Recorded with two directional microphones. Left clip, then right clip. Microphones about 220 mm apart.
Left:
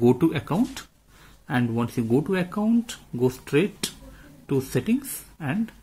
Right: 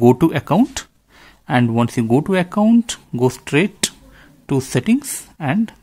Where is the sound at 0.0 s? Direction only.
40° right (ahead or behind).